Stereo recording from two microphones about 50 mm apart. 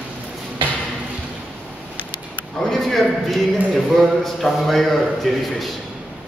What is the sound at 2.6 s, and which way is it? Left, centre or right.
A man's voice, centre.